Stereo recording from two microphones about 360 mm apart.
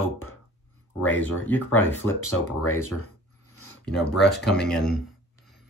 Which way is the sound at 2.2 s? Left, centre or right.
Left.